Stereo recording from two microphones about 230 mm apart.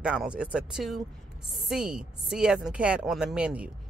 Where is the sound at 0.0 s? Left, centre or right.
Centre.